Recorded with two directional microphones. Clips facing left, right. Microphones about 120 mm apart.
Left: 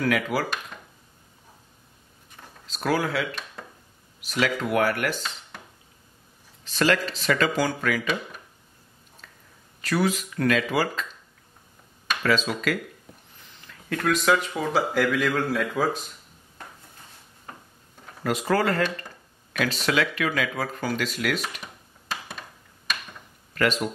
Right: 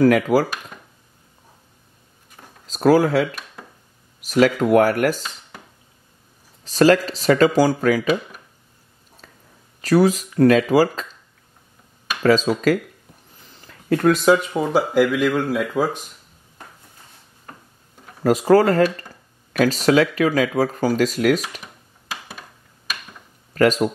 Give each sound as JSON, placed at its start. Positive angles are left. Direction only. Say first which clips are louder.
{"t": 0.0, "sound": "speech", "louder": "right 9 dB", "side_deg": -40}
{"t": 2.6, "sound": "speech", "louder": "right 10 dB", "side_deg": -40}
{"t": 6.6, "sound": "speech", "louder": "right 8 dB", "side_deg": -40}
{"t": 9.2, "sound": "whispering", "louder": "right 4 dB", "side_deg": -35}
{"t": 9.8, "sound": "speech", "louder": "right 8 dB", "side_deg": -40}
{"t": 12.2, "sound": "speech", "louder": "right 8 dB", "side_deg": -40}
{"t": 13.5, "sound": "a sound", "louder": "right 11 dB", "side_deg": -35}
{"t": 14.6, "sound": "speech", "louder": "right 6 dB", "side_deg": -15}
{"t": 18.2, "sound": "speech", "louder": "right 9 dB", "side_deg": -40}
{"t": 22.0, "sound": "a sound", "louder": "even", "side_deg": -5}
{"t": 23.5, "sound": "speech", "louder": "right 8 dB", "side_deg": -40}